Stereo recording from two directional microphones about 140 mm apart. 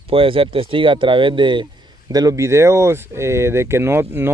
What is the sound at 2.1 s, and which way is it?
Speech, 25° right (ahead or behind).